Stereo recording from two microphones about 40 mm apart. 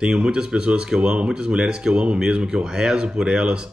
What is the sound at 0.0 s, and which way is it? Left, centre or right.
Speech, centre.